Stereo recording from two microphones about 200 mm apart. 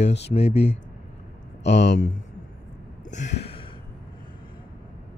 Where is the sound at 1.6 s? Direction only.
60° left (ahead or behind).